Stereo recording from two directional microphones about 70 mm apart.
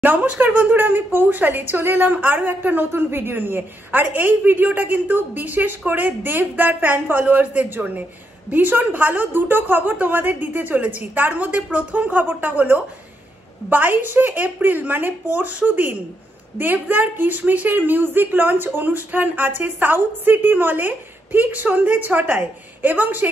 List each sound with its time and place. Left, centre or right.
0.0 s a woman's voice: right